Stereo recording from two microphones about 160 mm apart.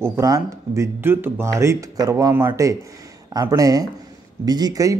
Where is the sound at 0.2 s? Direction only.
20° right (ahead or behind).